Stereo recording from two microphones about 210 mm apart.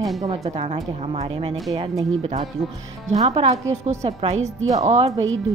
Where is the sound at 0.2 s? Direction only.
30° right (ahead or behind).